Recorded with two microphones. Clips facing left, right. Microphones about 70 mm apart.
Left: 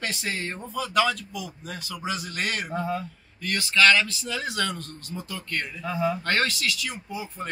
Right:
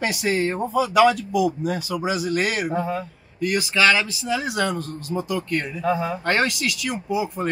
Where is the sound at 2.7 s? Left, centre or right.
Right.